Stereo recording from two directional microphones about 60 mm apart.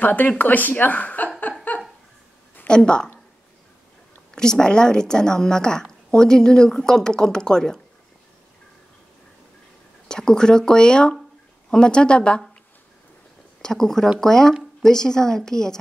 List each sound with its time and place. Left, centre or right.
0.0 s speech: left
1.7 s a sound: left
2.7 s a woman's voice: centre
4.4 s a woman's voice: centre
10.0 s a woman's voice: centre
13.6 s a woman's voice: centre